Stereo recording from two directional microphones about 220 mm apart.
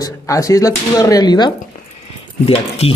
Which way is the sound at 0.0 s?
15° left (ahead or behind).